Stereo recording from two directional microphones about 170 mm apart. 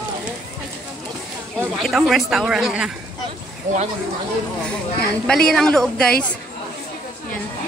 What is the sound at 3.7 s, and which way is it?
Speech, 45° right (ahead or behind).